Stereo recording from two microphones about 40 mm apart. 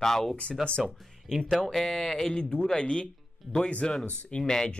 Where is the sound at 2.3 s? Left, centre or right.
Left.